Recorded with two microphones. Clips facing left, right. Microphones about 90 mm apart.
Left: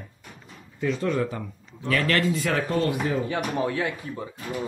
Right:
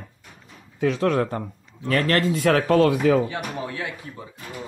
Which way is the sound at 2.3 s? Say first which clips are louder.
Right 7 dB; 65° right (ahead or behind).